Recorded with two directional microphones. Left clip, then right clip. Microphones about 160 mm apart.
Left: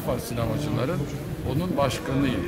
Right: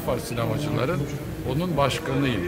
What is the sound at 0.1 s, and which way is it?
Speech, 15° left (ahead or behind).